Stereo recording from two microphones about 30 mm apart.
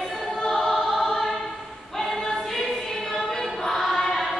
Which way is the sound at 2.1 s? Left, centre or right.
Centre.